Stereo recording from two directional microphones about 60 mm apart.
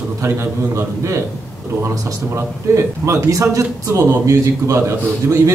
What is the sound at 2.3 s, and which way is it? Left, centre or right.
A man's voice, right.